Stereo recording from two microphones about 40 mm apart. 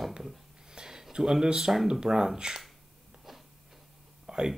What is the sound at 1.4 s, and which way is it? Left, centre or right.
Speech, centre.